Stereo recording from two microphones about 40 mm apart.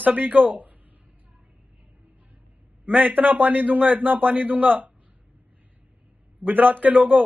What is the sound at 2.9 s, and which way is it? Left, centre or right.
A man's voice, right.